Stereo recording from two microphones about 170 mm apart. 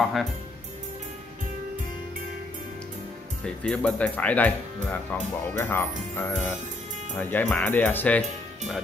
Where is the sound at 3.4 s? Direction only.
5° left (ahead or behind).